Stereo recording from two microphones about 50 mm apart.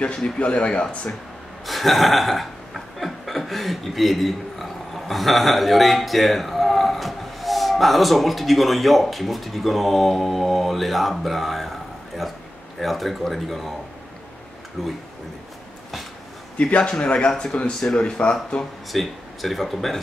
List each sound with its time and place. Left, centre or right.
0.4 s speech: left
1.7 s a sound: centre
12.2 s speech: centre
14.8 s speech: centre
16.5 s speech: left
18.9 s speech: centre